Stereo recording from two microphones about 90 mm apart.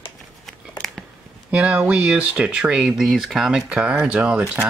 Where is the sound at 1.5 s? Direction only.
15° right (ahead or behind).